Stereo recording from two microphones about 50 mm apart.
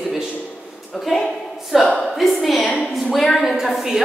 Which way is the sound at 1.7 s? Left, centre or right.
Centre.